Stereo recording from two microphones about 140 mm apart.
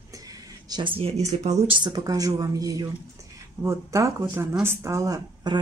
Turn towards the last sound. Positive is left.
turn(degrees=-25)  # may be behind; listen again after turning